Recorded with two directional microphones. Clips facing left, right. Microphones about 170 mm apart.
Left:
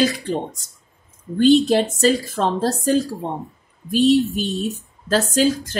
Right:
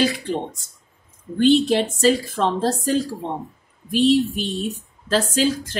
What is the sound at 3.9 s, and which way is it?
Speech, 40° left (ahead or behind).